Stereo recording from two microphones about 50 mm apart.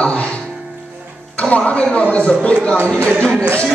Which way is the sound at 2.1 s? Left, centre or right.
Left.